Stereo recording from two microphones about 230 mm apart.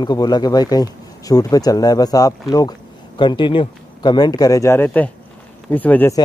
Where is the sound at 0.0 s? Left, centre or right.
Centre.